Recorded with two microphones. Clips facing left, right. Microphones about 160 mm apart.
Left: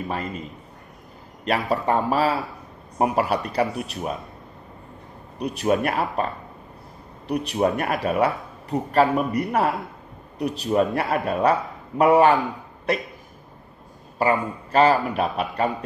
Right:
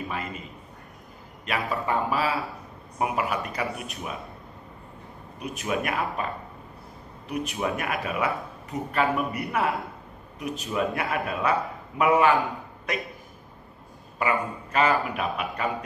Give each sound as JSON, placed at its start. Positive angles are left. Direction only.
{"t": 1.7, "sound": "a man's voice", "side_deg": 40}
{"t": 5.4, "sound": "a man's voice", "side_deg": 35}
{"t": 14.1, "sound": "a man's voice", "side_deg": 35}